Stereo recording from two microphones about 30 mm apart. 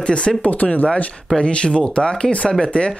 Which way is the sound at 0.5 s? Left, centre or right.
Left.